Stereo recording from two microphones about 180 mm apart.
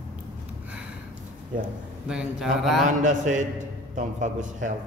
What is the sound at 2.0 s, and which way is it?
Speech, 5° right (ahead or behind).